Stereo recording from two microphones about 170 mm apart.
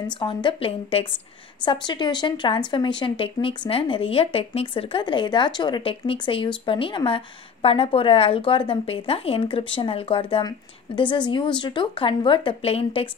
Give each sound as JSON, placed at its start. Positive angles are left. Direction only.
{"t": 0.0, "sound": "speech", "side_deg": 30}